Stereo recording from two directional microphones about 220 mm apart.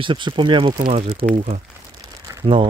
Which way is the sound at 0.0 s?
20° right (ahead or behind).